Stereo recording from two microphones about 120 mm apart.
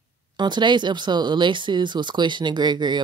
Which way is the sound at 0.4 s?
40° right (ahead or behind).